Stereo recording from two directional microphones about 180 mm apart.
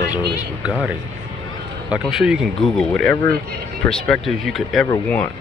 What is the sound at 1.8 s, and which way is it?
Speech, 5° right (ahead or behind).